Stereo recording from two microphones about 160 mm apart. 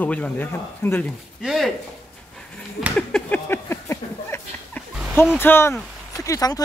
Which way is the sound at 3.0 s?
5° left (ahead or behind).